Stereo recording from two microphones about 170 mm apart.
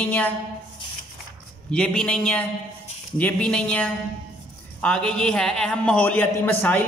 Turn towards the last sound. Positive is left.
turn(degrees=10)  # may be behind; listen again after turning